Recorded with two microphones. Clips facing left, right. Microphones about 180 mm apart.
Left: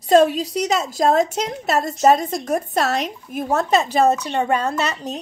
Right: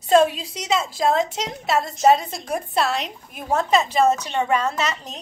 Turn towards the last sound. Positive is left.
turn(degrees=35)  # may be behind; listen again after turning